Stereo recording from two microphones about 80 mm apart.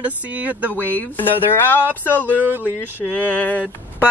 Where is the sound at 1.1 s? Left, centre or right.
Left.